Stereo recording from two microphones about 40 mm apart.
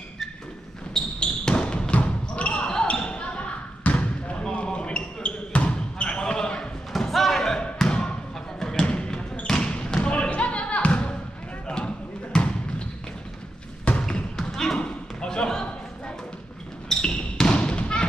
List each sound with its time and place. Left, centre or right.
0.9 s basketball bounce: left
2.0 s basketball bounce: left
6.9 s slam: centre
7.8 s thump: centre
8.5 s a sound: centre
8.8 s basketball bounce: left
13.9 s a sound: left
14.3 s a sound: centre
14.8 s basketball bounce: left
17.0 s basketball bounce: left